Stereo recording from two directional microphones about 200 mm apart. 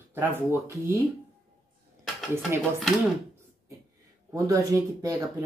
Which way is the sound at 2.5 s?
10° right (ahead or behind).